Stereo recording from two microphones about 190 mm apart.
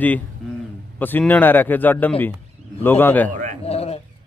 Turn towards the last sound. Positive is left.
turn(degrees=30)  # may be behind; listen again after turning